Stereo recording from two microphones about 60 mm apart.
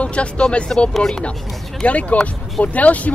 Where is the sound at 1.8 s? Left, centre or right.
Left.